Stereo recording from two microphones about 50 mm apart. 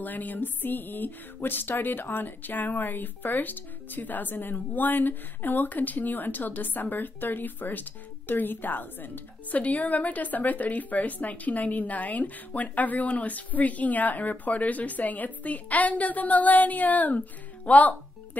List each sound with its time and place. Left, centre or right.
0.0 s a woman's voice: left